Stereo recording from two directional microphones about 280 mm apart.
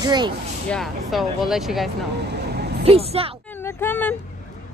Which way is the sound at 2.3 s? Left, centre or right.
Right.